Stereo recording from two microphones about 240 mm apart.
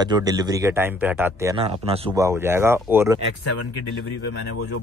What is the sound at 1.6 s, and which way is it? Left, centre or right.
Speech, right.